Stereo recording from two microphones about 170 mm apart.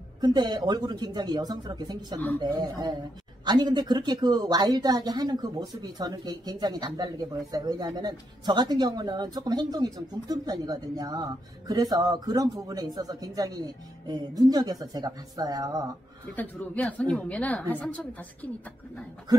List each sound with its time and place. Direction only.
0.2 s speech: 25° right (ahead or behind)
16.3 s a woman's voice: 10° left (ahead or behind)